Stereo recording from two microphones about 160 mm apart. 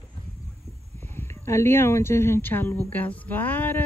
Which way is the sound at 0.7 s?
15° left (ahead or behind).